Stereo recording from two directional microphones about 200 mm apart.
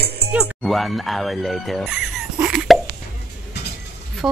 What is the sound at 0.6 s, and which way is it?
Speech, centre (ahead or behind).